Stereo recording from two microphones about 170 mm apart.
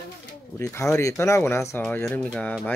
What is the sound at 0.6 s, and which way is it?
Speech, 15° left (ahead or behind).